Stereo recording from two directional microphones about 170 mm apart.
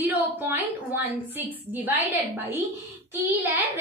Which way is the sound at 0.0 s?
10° right (ahead or behind).